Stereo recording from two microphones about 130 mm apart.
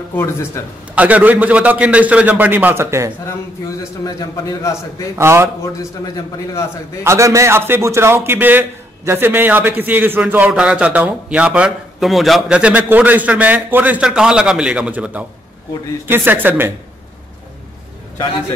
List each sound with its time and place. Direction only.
0.1 s a man's voice: 20° left (ahead or behind)
0.9 s a man's voice: 10° right (ahead or behind)
4.0 s a man's voice: 25° left (ahead or behind)
5.1 s a man's voice: 20° right (ahead or behind)
7.0 s a man's voice: 20° right (ahead or behind)